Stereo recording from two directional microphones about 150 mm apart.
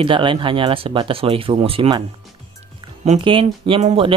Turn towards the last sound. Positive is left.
turn(degrees=-40)  # may be behind; listen again after turning